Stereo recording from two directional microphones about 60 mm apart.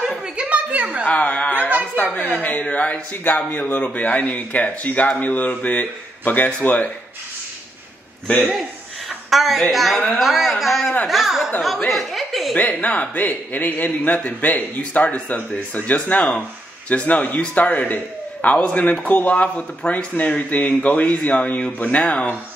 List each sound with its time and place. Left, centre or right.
0.4 s a sound: right
1.0 s a sound: left
2.1 s a man's voice: left
9.3 s speech: centre
11.9 s chuckle: centre
12.8 s a man's voice: left